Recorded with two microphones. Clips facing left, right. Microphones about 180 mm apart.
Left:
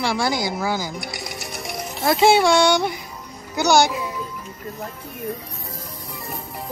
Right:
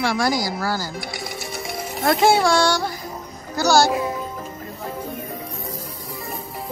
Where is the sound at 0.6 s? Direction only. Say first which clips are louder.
Left 1 dB; 20° left (ahead or behind).